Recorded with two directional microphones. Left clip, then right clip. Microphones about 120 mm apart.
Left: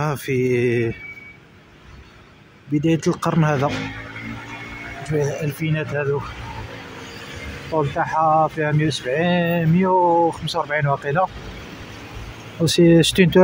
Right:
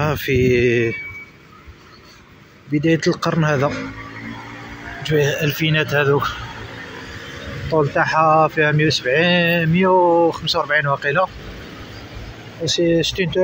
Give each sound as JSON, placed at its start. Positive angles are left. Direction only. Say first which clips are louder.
{"t": 0.0, "sound": "mantra", "louder": "right 4 dB", "side_deg": 15}
{"t": 2.7, "sound": "speech", "louder": "right 3 dB", "side_deg": 25}
{"t": 5.0, "sound": "speech", "louder": "right 5 dB", "side_deg": 0}
{"t": 7.9, "sound": "speech", "louder": "right 3 dB", "side_deg": -5}
{"t": 9.8, "sound": "speech", "louder": "right 2 dB", "side_deg": -10}
{"t": 10.3, "sound": "mantra", "louder": "right 4 dB", "side_deg": 10}
{"t": 12.6, "sound": "speech", "louder": "left 2 dB", "side_deg": 85}